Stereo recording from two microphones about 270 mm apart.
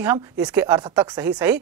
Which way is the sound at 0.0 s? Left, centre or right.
Centre.